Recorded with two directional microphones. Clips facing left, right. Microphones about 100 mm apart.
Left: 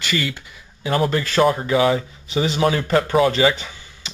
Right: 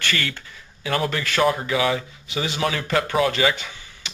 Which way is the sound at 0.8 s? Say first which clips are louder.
Left 4 dB; 25° left (ahead or behind).